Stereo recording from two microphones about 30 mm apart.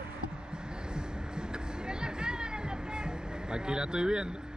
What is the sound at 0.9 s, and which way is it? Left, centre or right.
Music, right.